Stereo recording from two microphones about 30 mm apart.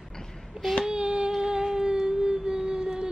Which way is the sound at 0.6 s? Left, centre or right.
Right.